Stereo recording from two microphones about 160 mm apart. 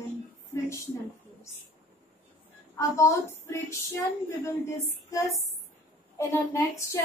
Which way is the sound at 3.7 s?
20° left (ahead or behind).